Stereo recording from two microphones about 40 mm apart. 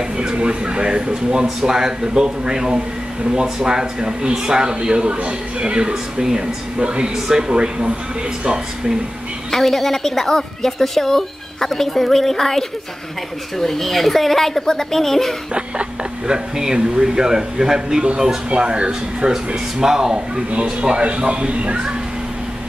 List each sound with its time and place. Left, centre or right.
0.2 s a man's voice: right
9.5 s a woman's voice: centre
15.5 s a man's voice: right